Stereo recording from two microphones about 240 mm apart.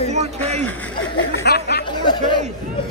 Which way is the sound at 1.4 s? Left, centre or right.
Left.